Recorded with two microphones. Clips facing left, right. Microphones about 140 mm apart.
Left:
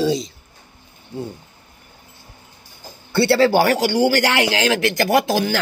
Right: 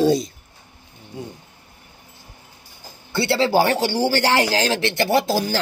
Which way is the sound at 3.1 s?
20° right (ahead or behind).